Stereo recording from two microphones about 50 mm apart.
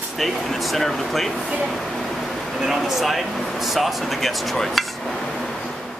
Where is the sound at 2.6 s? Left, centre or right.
Centre.